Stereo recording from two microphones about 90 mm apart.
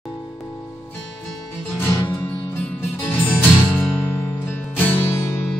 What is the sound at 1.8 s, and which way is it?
Music, 25° left (ahead or behind).